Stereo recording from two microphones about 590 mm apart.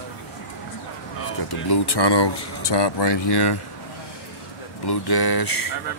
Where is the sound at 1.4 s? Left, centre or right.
Left.